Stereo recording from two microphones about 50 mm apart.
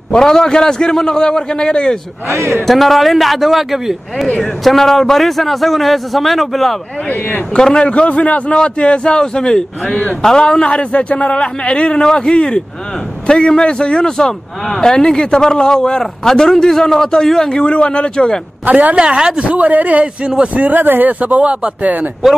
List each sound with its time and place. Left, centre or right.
0.1 s a man's voice: centre
2.2 s a man's voice: right
2.6 s a man's voice: centre
7.1 s speech: left
7.5 s a man's voice: centre
7.9 s a man's voice: left
18.7 s a woman's voice: right
18.9 s a man's voice: centre